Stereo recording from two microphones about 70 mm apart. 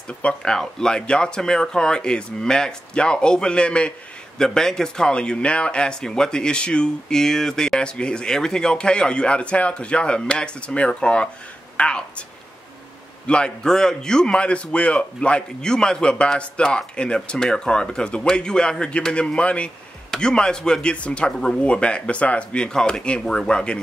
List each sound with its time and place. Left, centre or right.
0.2 s a man's voice: centre
13.3 s a man's voice: centre